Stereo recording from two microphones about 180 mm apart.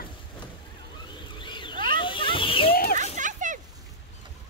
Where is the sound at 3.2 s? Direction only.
45° right (ahead or behind).